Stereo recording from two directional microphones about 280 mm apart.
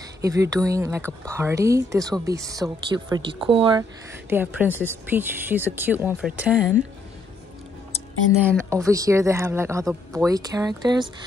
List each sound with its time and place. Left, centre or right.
0.2 s speech: centre
4.3 s speech: centre
8.5 s speech: centre